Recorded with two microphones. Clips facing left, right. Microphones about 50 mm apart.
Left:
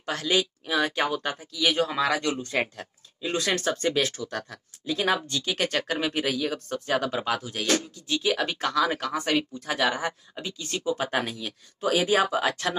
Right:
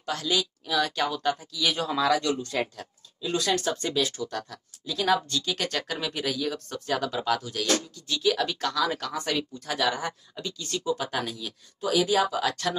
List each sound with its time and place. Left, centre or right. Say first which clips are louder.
0.0 s speech: left 2 dB; left; by 1.9 s centre
1.9 s speech: right 1 dB; left